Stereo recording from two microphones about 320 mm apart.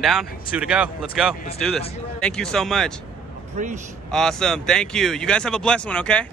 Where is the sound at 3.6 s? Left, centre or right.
Right.